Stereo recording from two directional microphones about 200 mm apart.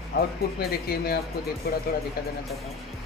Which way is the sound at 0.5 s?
50° left (ahead or behind).